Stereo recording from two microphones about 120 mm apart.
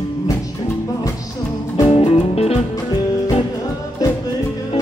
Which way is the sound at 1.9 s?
55° left (ahead or behind).